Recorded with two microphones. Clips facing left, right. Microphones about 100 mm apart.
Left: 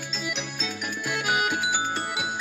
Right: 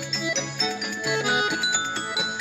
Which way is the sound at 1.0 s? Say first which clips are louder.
Right 2 dB; 20° right (ahead or behind).